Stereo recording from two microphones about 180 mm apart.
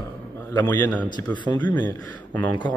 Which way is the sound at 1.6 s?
10° left (ahead or behind).